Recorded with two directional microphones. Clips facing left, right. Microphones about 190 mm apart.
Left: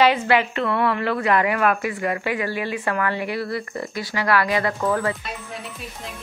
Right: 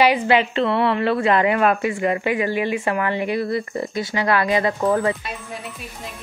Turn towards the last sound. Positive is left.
turn(degrees=-20)  # may be behind; listen again after turning